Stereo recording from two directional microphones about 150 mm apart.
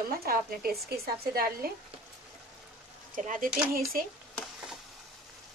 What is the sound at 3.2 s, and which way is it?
Speech, 60° right (ahead or behind).